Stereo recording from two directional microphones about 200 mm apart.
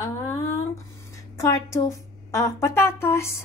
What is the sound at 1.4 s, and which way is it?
A woman's voice, 15° left (ahead or behind).